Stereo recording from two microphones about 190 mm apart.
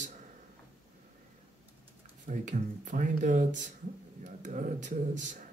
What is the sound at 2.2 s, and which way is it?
Speech, 40° right (ahead or behind).